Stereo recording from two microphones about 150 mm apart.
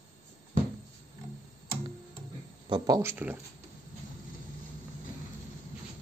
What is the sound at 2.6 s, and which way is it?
Speech, 30° right (ahead or behind).